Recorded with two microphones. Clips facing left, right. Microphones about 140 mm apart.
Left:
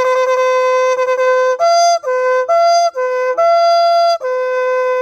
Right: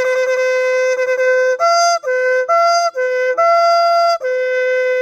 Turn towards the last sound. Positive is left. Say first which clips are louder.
# left 1 dB
turn(degrees=25)  # may be behind; listen again after turning